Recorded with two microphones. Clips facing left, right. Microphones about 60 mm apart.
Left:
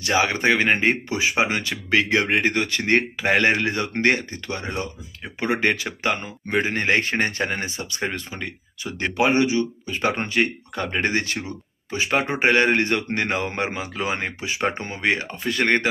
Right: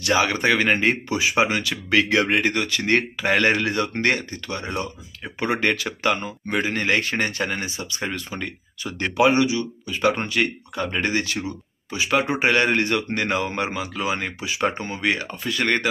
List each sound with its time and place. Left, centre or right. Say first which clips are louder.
0.0 s speech: even; left
8.3 s speech: right 2 dB; centre
9.1 s speech: right 1 dB; left